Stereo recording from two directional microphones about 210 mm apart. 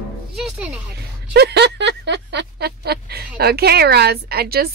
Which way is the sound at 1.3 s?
50° right (ahead or behind).